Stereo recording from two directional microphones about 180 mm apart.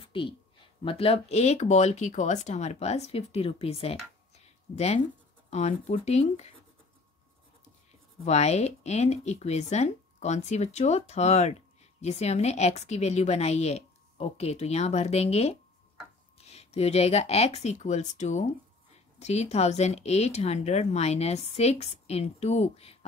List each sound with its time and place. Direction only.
0.0 s a sound: 30° left (ahead or behind)
0.8 s speech: 30° left (ahead or behind)
8.3 s speech: 40° left (ahead or behind)